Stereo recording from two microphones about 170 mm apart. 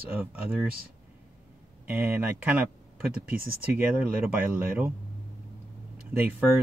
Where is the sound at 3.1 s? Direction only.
60° right (ahead or behind).